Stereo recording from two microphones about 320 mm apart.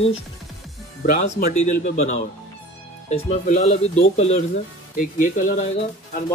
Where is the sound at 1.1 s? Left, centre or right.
Left.